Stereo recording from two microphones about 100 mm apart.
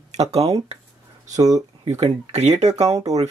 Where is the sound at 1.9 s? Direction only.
90° right.